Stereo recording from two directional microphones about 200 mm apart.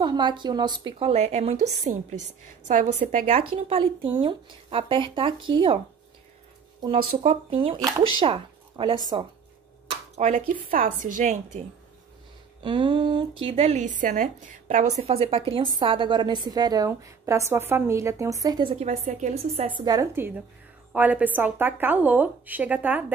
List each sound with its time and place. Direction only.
0.0 s a woman's voice: 20° right (ahead or behind)
6.8 s a woman's voice: 30° right (ahead or behind)
9.8 s a sound: 35° right (ahead or behind)
10.5 s a woman's voice: 45° right (ahead or behind)
12.6 s speech: 25° right (ahead or behind); by 23.1 s 10° right (ahead or behind)